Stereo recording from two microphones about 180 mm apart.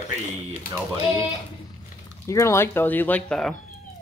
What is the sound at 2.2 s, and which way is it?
Speech, 15° left (ahead or behind).